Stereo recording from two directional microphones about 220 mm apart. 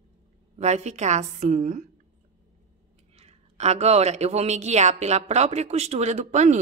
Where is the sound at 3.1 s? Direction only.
30° right (ahead or behind).